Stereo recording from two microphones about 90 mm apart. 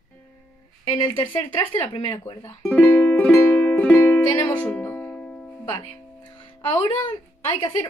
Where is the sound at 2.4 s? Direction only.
20° left (ahead or behind); by 5.6 s 5° left (ahead or behind).